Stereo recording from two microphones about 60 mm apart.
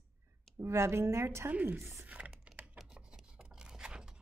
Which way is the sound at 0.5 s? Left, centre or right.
Right.